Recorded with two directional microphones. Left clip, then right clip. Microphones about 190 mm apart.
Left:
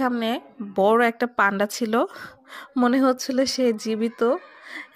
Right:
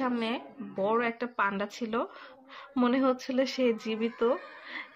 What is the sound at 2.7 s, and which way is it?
A woman's voice, 35° left (ahead or behind).